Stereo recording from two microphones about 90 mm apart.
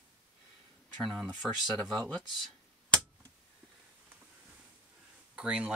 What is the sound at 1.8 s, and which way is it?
Speech, 20° left (ahead or behind).